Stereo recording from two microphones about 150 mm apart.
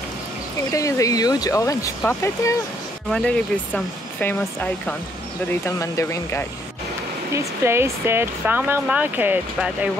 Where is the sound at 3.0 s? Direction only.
5° left (ahead or behind).